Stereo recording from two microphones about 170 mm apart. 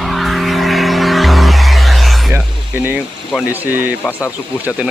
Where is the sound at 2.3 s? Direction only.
10° right (ahead or behind).